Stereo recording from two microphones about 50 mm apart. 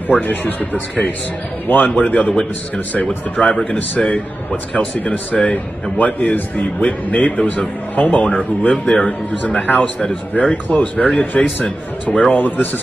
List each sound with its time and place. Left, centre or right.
0.2 s a man's voice: left
3.3 s speech: centre
3.7 s a man's voice: left
8.8 s speech: centre
9.7 s speech: left